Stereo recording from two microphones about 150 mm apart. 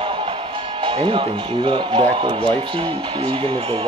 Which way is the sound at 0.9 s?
35° right (ahead or behind).